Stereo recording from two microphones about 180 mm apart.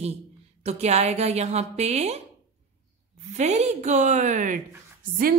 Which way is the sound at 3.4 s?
40° right (ahead or behind).